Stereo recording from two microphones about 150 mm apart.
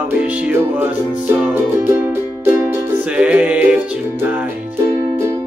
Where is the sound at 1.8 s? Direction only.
15° right (ahead or behind).